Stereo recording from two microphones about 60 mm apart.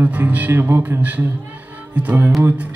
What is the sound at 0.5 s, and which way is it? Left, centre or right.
Music, right.